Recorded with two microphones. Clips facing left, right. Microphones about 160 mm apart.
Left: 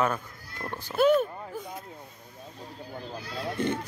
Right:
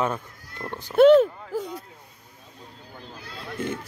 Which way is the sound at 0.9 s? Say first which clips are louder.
Right 8 dB; 75° right (ahead or behind).